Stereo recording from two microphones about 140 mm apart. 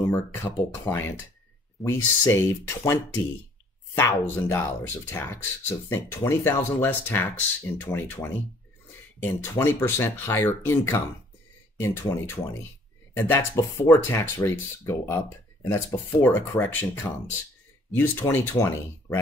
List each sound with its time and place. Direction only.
0.1 s speech: 20° left (ahead or behind)